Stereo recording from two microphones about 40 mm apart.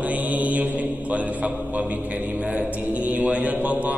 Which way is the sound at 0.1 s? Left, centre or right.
Right.